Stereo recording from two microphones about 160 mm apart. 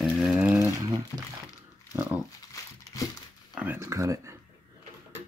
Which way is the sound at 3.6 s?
15° right (ahead or behind).